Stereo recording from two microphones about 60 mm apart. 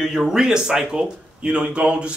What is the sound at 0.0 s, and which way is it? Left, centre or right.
Speech, centre.